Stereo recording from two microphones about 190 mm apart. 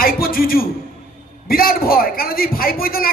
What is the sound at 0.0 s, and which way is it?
A man's voice, 50° left (ahead or behind).